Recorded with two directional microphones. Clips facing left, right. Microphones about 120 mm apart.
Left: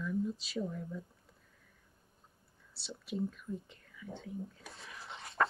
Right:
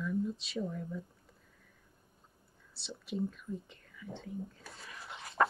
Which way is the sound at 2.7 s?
Centre (ahead or behind).